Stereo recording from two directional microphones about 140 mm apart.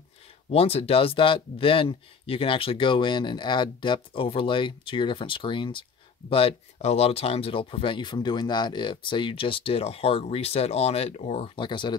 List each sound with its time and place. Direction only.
0.5 s speech: 45° left (ahead or behind)